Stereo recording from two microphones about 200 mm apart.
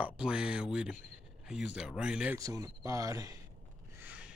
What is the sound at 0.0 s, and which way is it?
Speech, 5° right (ahead or behind).